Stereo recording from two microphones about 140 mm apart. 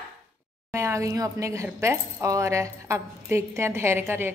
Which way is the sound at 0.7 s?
20° right (ahead or behind).